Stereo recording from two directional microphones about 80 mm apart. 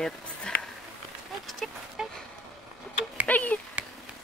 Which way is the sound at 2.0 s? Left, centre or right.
Centre.